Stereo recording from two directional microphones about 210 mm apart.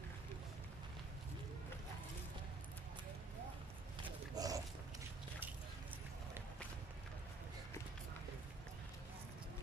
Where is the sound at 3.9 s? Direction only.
20° right (ahead or behind).